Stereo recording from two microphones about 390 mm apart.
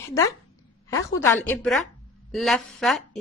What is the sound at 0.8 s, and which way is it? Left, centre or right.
Speech, centre.